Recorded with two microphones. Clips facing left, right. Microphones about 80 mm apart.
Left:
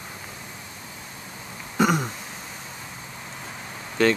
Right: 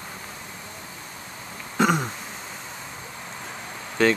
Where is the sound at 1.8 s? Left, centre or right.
Centre.